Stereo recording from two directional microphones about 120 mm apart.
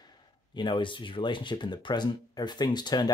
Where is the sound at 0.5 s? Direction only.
40° left (ahead or behind).